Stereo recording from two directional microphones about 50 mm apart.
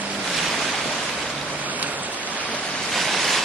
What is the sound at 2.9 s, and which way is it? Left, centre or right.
Waves, centre.